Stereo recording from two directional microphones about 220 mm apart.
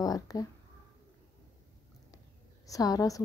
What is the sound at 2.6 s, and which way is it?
Speech, 15° left (ahead or behind).